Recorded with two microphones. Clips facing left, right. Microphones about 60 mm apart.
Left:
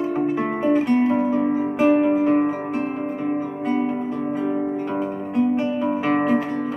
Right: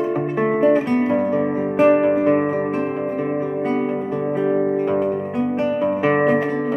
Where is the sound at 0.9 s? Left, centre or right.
Right.